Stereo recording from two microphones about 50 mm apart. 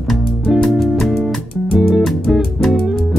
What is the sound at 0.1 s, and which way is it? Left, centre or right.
Music, centre.